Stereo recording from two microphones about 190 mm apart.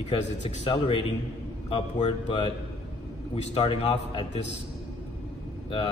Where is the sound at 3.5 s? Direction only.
25° left (ahead or behind).